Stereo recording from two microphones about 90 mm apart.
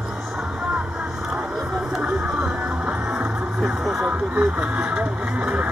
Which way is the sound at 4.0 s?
15° right (ahead or behind).